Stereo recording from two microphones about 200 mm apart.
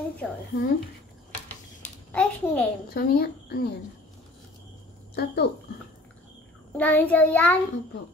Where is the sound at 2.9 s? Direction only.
50° left (ahead or behind).